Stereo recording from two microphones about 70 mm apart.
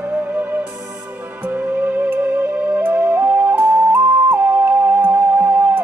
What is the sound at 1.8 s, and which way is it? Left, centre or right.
Music, right.